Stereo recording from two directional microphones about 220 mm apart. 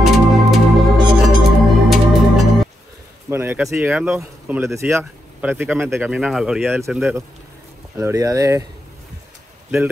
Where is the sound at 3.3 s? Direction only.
10° right (ahead or behind).